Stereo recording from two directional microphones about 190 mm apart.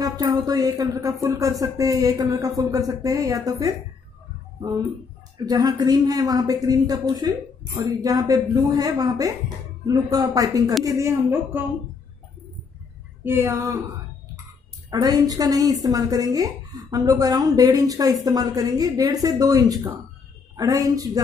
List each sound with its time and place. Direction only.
0.0 s speech: 20° right (ahead or behind)
5.4 s a woman's voice: 20° right (ahead or behind)
13.2 s speech: 10° right (ahead or behind)
14.9 s a woman's voice: 20° right (ahead or behind)